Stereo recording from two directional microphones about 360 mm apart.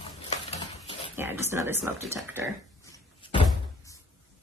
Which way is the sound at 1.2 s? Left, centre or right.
Centre.